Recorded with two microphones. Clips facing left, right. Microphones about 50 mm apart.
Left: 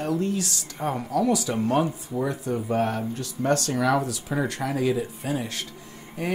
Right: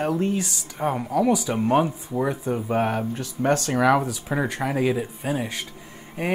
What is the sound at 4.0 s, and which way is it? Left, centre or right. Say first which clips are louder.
Speech: right 1 dB; centre.